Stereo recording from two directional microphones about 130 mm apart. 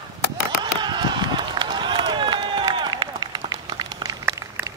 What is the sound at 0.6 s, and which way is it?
Run, 35° right (ahead or behind).